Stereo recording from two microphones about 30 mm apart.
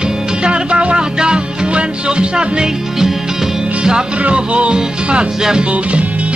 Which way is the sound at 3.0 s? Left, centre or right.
Centre.